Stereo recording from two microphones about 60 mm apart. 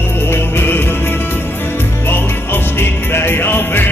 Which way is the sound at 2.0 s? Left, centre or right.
Left.